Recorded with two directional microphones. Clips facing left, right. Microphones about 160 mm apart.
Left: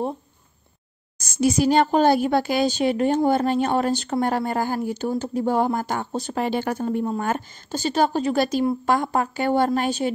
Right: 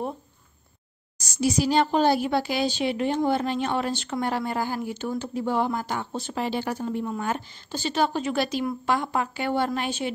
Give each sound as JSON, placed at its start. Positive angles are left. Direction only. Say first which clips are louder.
{"t": 1.1, "sound": "a woman's voice", "louder": "left 4 dB", "side_deg": 50}